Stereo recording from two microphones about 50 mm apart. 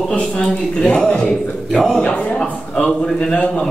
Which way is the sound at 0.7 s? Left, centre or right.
Centre.